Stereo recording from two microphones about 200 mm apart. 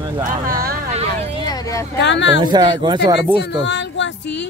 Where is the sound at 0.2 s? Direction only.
40° right (ahead or behind).